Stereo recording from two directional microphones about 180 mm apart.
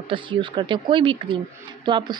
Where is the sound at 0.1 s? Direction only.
25° right (ahead or behind).